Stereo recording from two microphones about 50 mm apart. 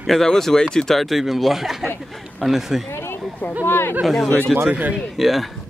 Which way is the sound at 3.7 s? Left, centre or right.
Left.